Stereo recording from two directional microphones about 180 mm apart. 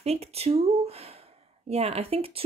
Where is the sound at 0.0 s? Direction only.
35° right (ahead or behind).